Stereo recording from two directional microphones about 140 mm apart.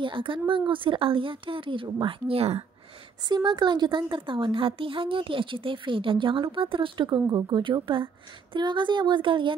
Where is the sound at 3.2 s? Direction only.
30° right (ahead or behind).